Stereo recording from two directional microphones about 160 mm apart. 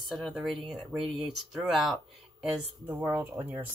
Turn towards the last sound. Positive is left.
turn(degrees=-10)  # may be behind; listen again after turning